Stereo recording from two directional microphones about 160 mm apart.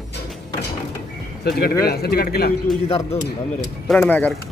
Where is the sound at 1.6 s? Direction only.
75° left (ahead or behind).